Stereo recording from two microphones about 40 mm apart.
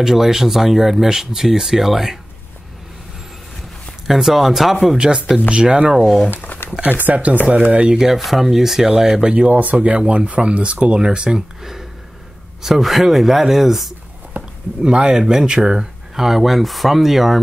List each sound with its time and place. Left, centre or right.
0.0 s speech: centre
4.1 s speech: centre
4.9 s speech: right
6.3 s a sound: left
7.1 s speech: right
7.9 s speech: centre
8.2 s speech: centre; by 9.5 s right
9.5 s speech: right
9.9 s speech: right
11.1 s speech: centre
14.3 s a sound: right
14.8 s speech: centre
16.3 s speech: centre